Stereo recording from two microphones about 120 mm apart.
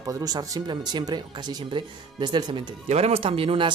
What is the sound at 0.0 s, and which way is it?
Speech, 30° right (ahead or behind).